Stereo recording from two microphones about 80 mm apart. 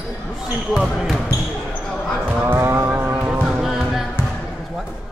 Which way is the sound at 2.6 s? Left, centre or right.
Right.